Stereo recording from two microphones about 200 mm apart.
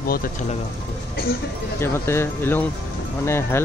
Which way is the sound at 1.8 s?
10° left (ahead or behind).